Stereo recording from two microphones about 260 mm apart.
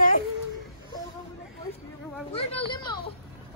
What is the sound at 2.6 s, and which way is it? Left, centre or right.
Speech, centre.